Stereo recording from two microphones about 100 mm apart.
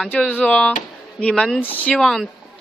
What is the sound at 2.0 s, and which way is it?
Speech, 5° left (ahead or behind).